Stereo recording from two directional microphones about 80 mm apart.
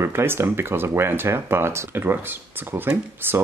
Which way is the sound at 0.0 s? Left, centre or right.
Right.